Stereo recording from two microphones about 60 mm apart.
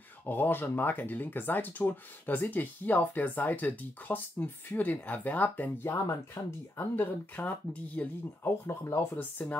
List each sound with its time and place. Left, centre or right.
0.2 s speech: left
5.9 s speech: left
6.8 s speech: left
8.6 s speech: left
9.1 s speech: left